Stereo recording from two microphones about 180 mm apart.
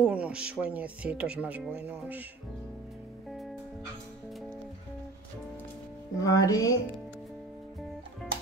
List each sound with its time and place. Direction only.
0.0 s speech: 5° right (ahead or behind)
6.1 s music: 20° left (ahead or behind)